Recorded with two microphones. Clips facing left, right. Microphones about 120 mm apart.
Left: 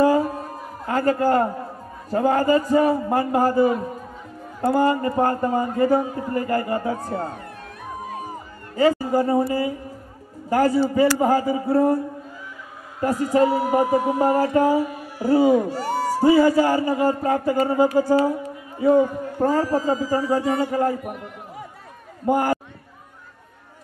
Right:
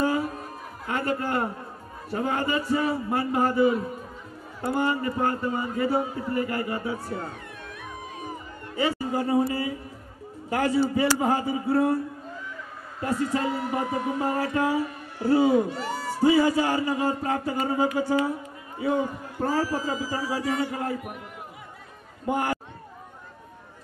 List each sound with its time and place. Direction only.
0.0 s music: 35° left (ahead or behind)
0.8 s a man's voice: 40° left (ahead or behind)
8.0 s music: 45° left (ahead or behind)
8.7 s a man's voice: 40° left (ahead or behind)
13.3 s a man's voice: 40° left (ahead or behind)
22.2 s a man's voice: 35° left (ahead or behind)